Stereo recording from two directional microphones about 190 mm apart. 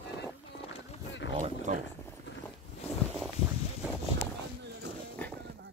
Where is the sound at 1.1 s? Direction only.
75° left (ahead or behind).